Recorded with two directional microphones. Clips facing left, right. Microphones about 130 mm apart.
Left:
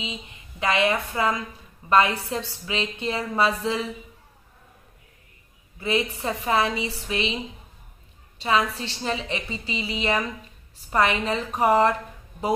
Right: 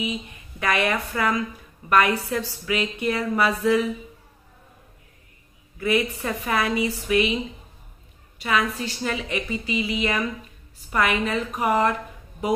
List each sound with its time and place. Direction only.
0.0 s a woman's voice: 20° left (ahead or behind)
5.8 s a woman's voice: 25° left (ahead or behind)
8.4 s a woman's voice: 30° left (ahead or behind)